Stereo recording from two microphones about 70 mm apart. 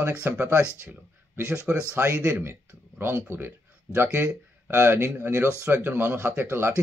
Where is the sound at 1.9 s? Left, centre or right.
Right.